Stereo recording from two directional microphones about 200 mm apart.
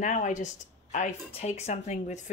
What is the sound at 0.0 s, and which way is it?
Speech, 40° left (ahead or behind).